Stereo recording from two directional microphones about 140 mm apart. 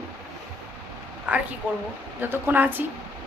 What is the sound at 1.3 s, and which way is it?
A woman's voice, 10° right (ahead or behind).